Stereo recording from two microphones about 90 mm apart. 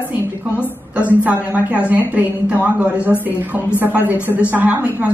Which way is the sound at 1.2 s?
15° right (ahead or behind).